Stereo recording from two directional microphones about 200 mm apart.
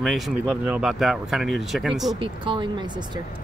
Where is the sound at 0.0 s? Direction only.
5° right (ahead or behind).